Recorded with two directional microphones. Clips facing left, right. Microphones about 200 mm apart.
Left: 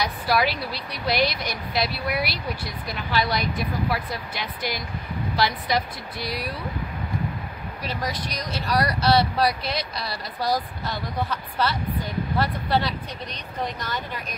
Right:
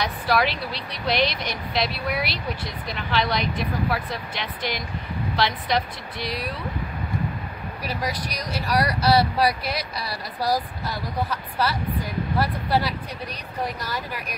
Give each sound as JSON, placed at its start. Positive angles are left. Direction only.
{"t": 0.0, "sound": "speech", "side_deg": 5}
{"t": 7.8, "sound": "speech", "side_deg": -10}